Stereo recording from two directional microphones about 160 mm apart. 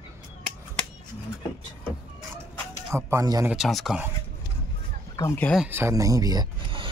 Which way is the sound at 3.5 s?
Centre (ahead or behind).